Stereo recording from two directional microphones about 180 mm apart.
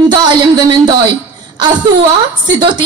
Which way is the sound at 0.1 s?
25° right (ahead or behind).